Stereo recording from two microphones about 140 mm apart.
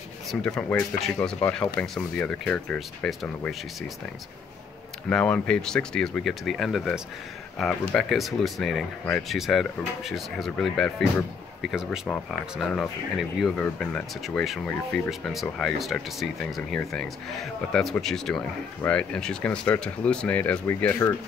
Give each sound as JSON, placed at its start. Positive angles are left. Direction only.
{"t": 0.3, "sound": "speech", "side_deg": 5}
{"t": 5.1, "sound": "speech", "side_deg": 5}
{"t": 21.0, "sound": "speech", "side_deg": 25}